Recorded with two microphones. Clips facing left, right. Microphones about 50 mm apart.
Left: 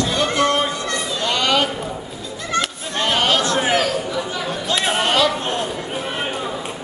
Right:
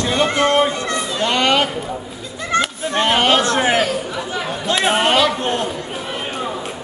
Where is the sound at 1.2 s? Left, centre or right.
Right.